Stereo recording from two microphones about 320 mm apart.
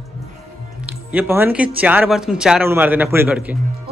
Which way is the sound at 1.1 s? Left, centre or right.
Centre.